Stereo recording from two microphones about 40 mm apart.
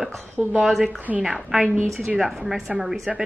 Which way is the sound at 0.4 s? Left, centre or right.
Right.